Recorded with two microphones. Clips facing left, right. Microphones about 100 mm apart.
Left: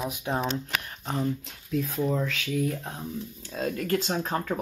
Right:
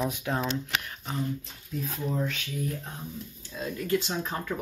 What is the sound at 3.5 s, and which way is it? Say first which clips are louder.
Speech: left 2 dB; 60° left (ahead or behind).